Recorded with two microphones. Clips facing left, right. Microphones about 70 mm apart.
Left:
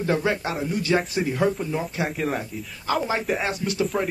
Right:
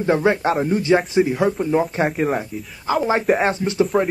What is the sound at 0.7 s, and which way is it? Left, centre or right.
Speech, right.